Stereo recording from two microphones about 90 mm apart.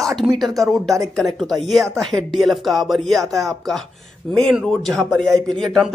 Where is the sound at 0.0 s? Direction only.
Centre (ahead or behind).